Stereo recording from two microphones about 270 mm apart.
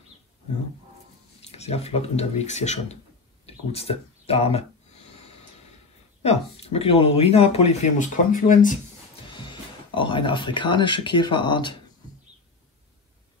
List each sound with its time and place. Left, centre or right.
1.4 s speech: left
6.2 s speech: left
9.3 s speech: centre